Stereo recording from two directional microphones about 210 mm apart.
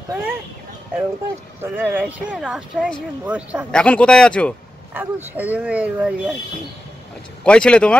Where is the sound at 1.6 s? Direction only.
10° right (ahead or behind).